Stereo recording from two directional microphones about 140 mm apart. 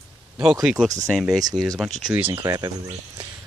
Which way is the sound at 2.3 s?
30° right (ahead or behind).